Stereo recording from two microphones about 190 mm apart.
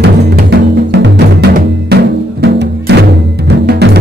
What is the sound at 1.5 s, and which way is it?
Music, 60° right (ahead or behind).